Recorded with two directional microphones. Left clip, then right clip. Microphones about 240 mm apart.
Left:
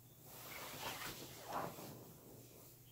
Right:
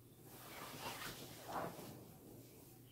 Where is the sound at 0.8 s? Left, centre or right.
Centre.